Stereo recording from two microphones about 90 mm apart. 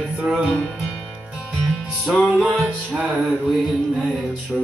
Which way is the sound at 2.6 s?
15° right (ahead or behind).